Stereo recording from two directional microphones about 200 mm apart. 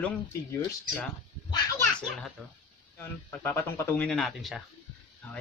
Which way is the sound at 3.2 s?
15° left (ahead or behind).